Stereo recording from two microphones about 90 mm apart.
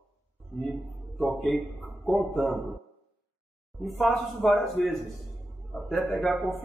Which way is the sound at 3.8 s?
Centre (ahead or behind).